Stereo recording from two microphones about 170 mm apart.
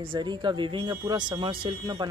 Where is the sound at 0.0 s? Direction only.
30° right (ahead or behind).